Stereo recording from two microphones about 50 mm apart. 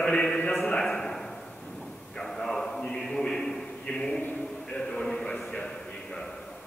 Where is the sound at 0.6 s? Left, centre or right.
Centre.